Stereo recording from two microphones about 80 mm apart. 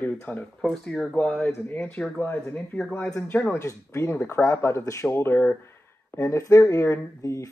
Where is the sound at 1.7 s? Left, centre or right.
Left.